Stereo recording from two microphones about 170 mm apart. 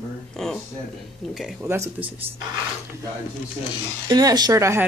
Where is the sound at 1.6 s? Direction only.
15° right (ahead or behind).